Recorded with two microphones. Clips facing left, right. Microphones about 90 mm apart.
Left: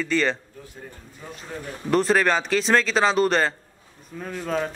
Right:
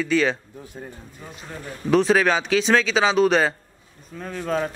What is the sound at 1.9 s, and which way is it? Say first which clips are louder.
A man's voice: right 2 dB; centre (ahead or behind).